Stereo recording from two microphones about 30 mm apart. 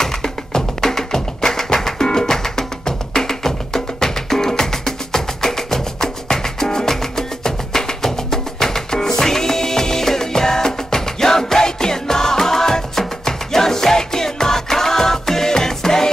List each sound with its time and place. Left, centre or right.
0.2 s music: centre